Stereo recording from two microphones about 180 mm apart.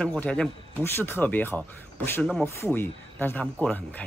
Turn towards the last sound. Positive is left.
turn(degrees=10)  # may be behind; listen again after turning